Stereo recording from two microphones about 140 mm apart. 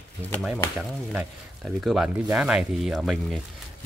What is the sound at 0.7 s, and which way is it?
Chop, 10° right (ahead or behind).